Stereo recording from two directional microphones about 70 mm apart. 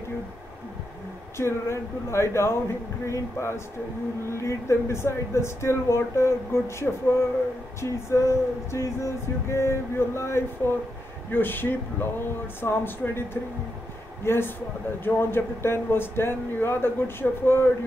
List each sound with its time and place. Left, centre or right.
1.3 s speech: left